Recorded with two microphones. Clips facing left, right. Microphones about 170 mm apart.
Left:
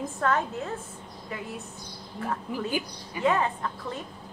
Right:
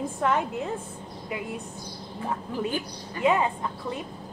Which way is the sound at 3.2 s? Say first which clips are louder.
Right 2 dB; 15° right (ahead or behind).